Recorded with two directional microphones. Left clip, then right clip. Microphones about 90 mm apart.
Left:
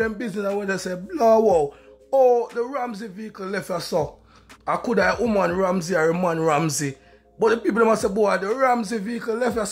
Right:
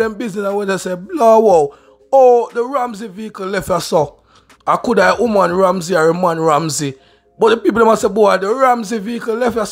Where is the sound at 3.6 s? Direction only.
65° right (ahead or behind).